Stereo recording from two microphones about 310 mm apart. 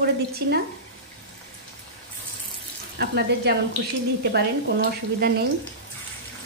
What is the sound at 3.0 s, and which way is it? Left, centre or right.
Speech, right.